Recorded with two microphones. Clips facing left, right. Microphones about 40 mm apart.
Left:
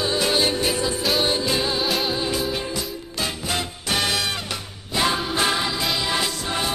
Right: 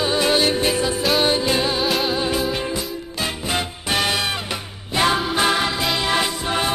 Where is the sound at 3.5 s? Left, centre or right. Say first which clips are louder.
Right 3 dB; centre.